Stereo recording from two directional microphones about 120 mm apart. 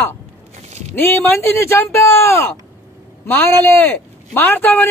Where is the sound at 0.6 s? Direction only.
70° right (ahead or behind).